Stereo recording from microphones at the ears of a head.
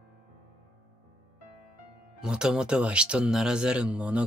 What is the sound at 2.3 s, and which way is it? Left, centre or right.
Speech, centre.